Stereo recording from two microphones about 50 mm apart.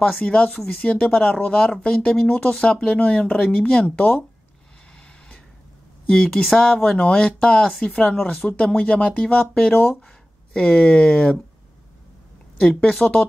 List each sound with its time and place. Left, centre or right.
0.0 s speech: centre
6.1 s speech: centre
12.5 s speech: centre